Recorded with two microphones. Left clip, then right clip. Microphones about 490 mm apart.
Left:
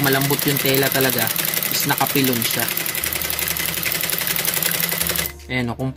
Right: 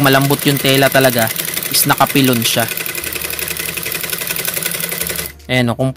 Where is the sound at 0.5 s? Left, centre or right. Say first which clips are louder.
Right 6 dB; centre.